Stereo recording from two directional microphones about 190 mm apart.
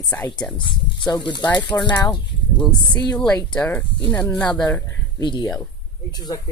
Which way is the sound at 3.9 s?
25° left (ahead or behind).